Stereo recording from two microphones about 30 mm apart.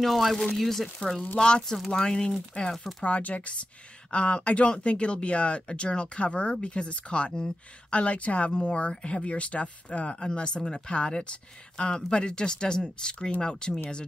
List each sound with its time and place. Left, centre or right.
0.0 s speech: centre
1.4 s speech: left
1.9 s speech: left
2.6 s speech: left
3.0 s speech: left
4.1 s speech: left
10.1 s speech: left
11.7 s speech: left